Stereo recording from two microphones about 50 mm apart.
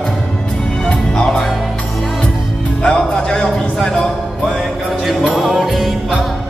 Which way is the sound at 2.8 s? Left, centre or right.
Centre.